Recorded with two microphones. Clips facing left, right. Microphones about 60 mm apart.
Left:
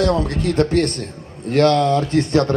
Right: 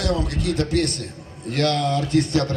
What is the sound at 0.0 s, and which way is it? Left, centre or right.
A man's voice, left.